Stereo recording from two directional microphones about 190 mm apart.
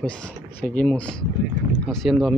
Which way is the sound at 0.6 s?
5° left (ahead or behind).